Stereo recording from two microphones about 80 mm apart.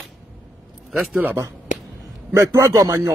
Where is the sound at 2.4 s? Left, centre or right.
Right.